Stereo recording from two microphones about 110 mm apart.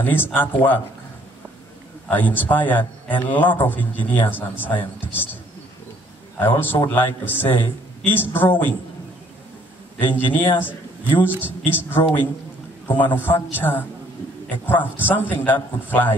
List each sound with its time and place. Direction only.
0.0 s a man's voice: 15° left (ahead or behind)
2.0 s a man's voice: 15° left (ahead or behind)
6.4 s a man's voice: 20° left (ahead or behind)
9.9 s a man's voice: 15° left (ahead or behind)